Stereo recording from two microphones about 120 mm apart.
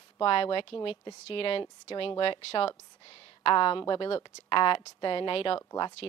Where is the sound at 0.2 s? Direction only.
50° left (ahead or behind).